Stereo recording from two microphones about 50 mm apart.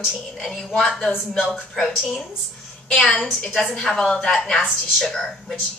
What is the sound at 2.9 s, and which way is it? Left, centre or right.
A woman's voice, centre.